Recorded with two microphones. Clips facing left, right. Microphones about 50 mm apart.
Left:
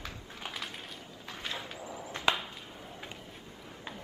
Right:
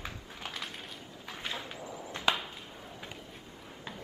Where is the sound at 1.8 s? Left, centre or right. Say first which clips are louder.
Even; centre.